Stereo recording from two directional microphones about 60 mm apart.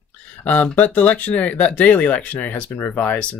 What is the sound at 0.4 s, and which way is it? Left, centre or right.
Speech, left.